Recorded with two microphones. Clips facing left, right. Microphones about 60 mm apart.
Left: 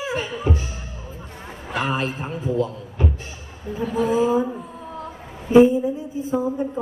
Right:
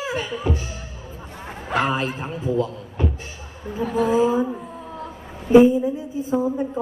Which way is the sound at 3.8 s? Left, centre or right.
Right.